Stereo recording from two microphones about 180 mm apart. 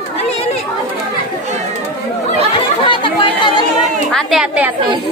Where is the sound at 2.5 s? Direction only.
30° left (ahead or behind).